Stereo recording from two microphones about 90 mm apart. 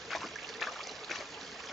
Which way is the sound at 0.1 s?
Centre (ahead or behind).